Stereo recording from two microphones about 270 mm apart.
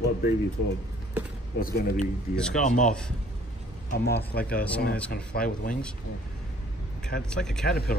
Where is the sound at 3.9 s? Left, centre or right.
Left.